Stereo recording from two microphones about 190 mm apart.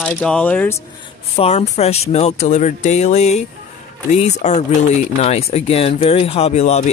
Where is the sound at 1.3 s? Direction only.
35° left (ahead or behind).